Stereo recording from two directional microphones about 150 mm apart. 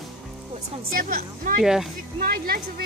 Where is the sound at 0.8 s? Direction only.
70° right (ahead or behind).